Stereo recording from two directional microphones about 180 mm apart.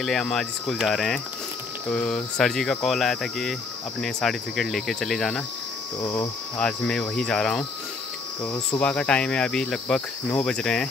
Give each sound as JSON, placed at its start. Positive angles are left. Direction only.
{"t": 0.0, "sound": "speech", "side_deg": 0}
{"t": 8.7, "sound": "speech", "side_deg": 5}